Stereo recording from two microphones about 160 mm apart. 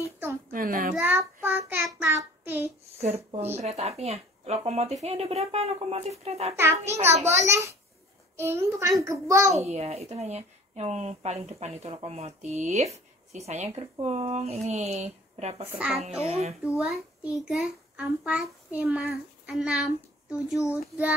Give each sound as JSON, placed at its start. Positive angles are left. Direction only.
{"t": 0.5, "sound": "a child's voice", "side_deg": -60}
{"t": 0.9, "sound": "child singing", "side_deg": -15}
{"t": 3.0, "sound": "a woman's voice", "side_deg": -40}
{"t": 6.5, "sound": "a child's voice", "side_deg": -15}
{"t": 9.6, "sound": "a woman's voice", "side_deg": -40}
{"t": 15.6, "sound": "a child's voice", "side_deg": -5}
{"t": 16.0, "sound": "a woman's voice", "side_deg": -40}
{"t": 16.6, "sound": "a child's voice", "side_deg": -5}